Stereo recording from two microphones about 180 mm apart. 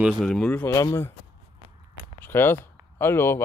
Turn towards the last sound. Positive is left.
turn(degrees=15)  # may be behind; listen again after turning